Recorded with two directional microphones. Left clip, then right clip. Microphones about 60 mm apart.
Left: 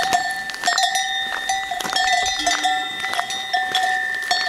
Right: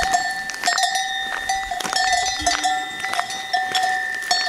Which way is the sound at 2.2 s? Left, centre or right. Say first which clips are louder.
Left 1 dB; centre.